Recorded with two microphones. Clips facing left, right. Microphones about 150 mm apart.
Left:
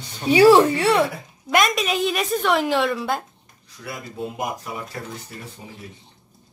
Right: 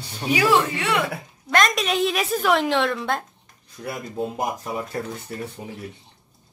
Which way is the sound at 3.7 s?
40° right (ahead or behind).